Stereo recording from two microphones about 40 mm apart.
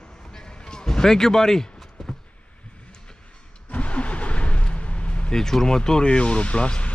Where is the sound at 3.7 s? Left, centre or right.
Left.